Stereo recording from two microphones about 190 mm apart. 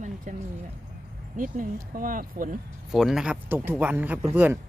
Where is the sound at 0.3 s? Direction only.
40° right (ahead or behind).